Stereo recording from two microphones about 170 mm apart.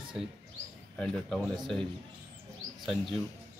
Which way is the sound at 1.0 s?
5° left (ahead or behind).